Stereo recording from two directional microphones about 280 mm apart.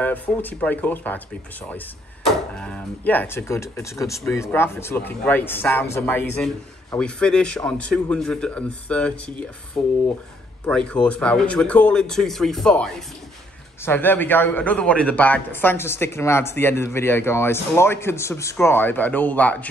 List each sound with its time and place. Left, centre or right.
0.0 s speech: centre
2.5 s a man's voice: centre